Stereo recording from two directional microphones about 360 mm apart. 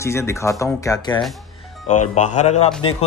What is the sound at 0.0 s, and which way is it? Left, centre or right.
Speech, centre.